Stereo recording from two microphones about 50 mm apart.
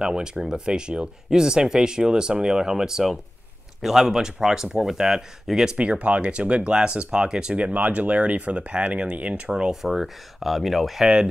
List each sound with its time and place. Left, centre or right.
0.0 s speech: centre
9.5 s speech: centre